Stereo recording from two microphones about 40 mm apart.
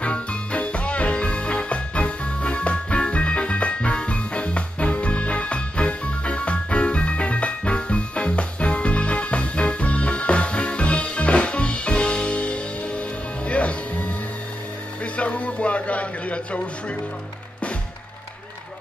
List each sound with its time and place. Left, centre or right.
0.0 s music: left
15.1 s music: left